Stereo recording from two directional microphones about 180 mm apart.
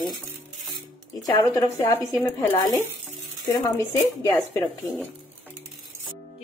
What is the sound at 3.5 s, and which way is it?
Speech, 20° left (ahead or behind).